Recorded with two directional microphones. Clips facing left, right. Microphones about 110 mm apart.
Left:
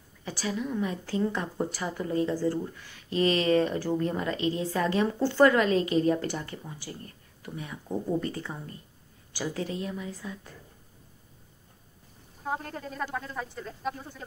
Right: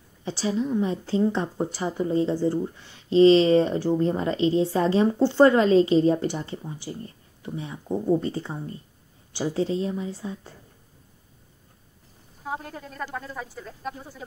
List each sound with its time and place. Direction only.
0.2 s a woman's voice: 25° right (ahead or behind)
12.4 s speech: centre (ahead or behind)